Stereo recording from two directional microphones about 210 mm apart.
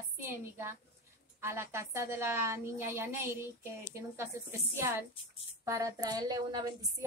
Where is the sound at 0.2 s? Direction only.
10° right (ahead or behind).